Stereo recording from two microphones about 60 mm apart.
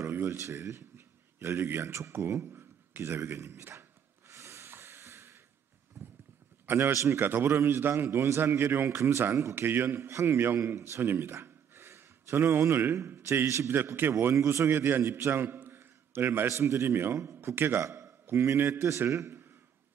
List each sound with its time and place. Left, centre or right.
0.0 s a sound: right
0.4 s a man's voice: right
4.3 s snort: right
6.0 s clip-clop: right
6.6 s a man's voice: right
6.9 s speech: right
7.2 s a man's voice: right
9.6 s a man's voice: right
13.7 s a man's voice: right
14.2 s a man's voice: right
14.7 s a man's voice: right
16.4 s a man's voice: right
17.8 s a sound: right
18.7 s a man's voice: right